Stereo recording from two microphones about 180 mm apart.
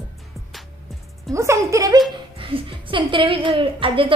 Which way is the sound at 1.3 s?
15° right (ahead or behind).